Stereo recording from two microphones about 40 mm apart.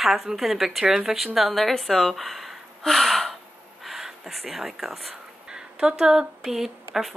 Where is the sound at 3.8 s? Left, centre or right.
Centre.